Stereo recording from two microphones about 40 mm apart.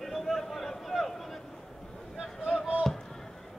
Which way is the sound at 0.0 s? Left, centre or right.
Centre.